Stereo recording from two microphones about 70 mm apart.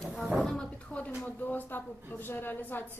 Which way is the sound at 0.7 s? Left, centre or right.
Left.